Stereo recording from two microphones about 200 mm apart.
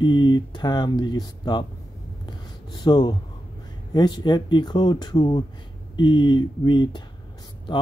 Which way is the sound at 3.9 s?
20° left (ahead or behind).